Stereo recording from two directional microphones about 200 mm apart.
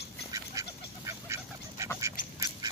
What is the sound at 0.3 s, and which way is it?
Duck, 15° right (ahead or behind).